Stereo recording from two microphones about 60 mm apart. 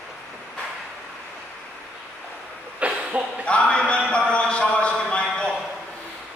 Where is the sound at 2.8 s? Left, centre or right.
Centre.